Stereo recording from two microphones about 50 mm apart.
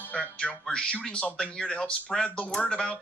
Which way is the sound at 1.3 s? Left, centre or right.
Centre.